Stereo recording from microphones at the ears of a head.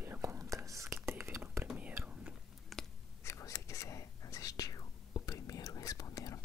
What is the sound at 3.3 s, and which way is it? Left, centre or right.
Whispering, left.